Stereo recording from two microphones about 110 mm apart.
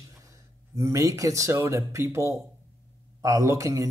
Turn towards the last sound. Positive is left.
turn(degrees=-30)  # may be behind; listen again after turning